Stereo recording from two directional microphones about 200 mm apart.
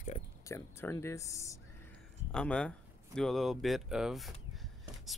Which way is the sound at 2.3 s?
5° left (ahead or behind).